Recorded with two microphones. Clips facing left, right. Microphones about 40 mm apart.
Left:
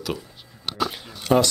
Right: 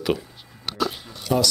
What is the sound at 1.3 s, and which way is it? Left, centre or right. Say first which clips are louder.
Speech: left 4 dB; left.